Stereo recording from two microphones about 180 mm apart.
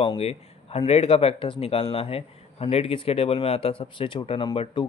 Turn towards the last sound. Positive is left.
turn(degrees=30)  # may be behind; listen again after turning